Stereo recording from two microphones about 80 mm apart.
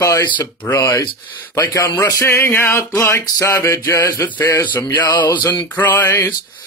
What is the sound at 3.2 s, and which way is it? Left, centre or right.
Speech, left.